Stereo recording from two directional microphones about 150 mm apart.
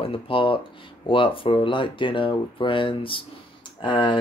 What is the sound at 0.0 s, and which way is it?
Speech, 35° left (ahead or behind).